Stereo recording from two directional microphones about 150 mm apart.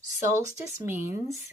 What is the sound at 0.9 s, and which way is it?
Speech, 15° right (ahead or behind).